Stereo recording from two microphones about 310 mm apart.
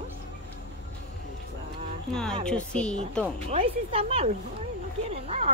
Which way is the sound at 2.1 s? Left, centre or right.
Centre.